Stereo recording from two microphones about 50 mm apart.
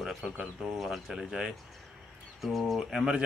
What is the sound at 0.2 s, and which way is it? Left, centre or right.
Speech, centre.